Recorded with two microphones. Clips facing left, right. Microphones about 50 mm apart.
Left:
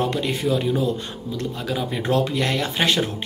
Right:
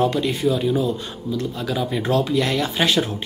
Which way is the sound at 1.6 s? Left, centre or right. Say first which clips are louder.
Right 2 dB; left.